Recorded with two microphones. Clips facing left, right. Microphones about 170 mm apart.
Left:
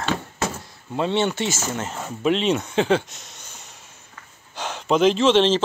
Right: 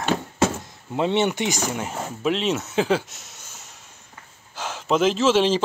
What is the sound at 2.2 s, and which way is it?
Speech, centre (ahead or behind).